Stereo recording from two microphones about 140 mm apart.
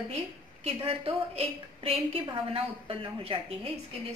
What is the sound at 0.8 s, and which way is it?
A woman's voice, 45° right (ahead or behind).